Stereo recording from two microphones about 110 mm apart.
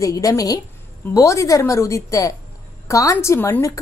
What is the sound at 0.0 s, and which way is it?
A woman's voice, 30° left (ahead or behind).